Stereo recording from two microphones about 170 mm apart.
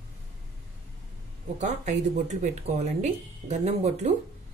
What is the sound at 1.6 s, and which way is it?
Speech, 40° right (ahead or behind).